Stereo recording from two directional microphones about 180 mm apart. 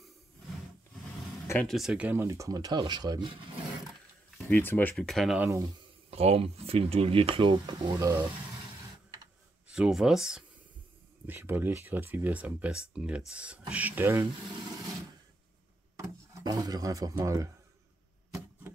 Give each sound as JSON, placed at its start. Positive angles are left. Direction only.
{"t": 1.5, "sound": "speech", "side_deg": 10}
{"t": 1.8, "sound": "speech", "side_deg": -5}
{"t": 4.4, "sound": "speech", "side_deg": 10}
{"t": 6.0, "sound": "speech", "side_deg": -35}
{"t": 9.8, "sound": "speech", "side_deg": -5}
{"t": 16.0, "sound": "speech", "side_deg": -20}